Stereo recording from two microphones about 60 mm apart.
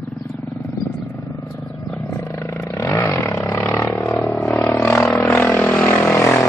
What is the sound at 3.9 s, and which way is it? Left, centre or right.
Vehicle, left.